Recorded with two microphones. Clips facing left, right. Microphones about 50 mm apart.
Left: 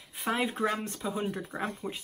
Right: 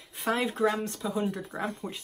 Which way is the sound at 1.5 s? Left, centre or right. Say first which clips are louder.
Right 1 dB; centre.